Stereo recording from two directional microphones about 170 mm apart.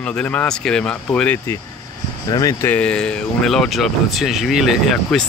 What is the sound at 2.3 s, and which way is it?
Speech, 20° left (ahead or behind).